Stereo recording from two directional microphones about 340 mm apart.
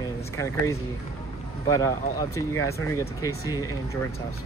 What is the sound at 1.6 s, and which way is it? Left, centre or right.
Speech, centre.